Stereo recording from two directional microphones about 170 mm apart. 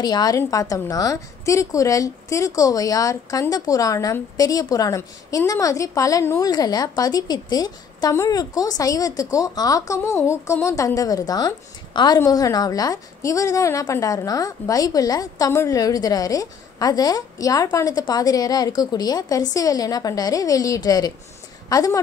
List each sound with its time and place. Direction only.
0.0 s a woman's voice: 25° left (ahead or behind)